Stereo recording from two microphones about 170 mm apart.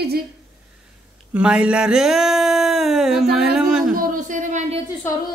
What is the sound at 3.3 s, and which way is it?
Speech, 5° right (ahead or behind).